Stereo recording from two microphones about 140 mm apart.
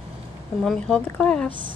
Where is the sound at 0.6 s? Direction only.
5° left (ahead or behind).